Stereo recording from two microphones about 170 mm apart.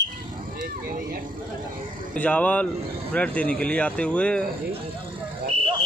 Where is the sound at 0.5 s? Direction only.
60° right (ahead or behind).